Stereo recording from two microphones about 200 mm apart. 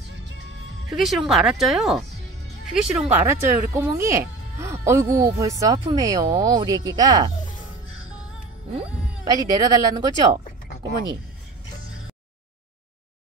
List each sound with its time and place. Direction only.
0.0 s music: 60° right (ahead or behind)
0.9 s speech: centre (ahead or behind); by 7.2 s 20° right (ahead or behind)
9.3 s speech: 20° right (ahead or behind)